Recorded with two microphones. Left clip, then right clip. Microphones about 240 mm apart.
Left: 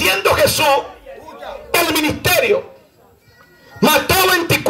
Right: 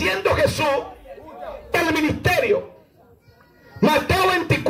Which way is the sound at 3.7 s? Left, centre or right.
Left.